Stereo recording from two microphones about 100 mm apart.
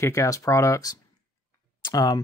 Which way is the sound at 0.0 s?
30° left (ahead or behind).